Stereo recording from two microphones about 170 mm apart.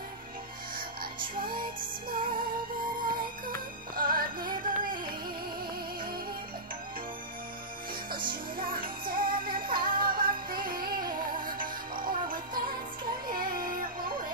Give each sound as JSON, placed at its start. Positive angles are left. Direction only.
{"t": 2.0, "sound": "music", "side_deg": -55}
{"t": 8.5, "sound": "music", "side_deg": -55}